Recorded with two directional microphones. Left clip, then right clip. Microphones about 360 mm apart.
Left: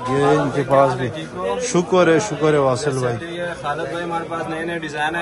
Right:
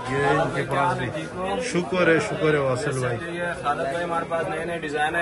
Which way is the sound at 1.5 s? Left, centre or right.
Centre.